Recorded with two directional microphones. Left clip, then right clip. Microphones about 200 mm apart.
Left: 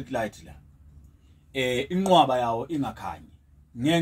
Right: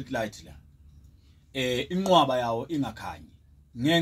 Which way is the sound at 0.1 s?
5° left (ahead or behind).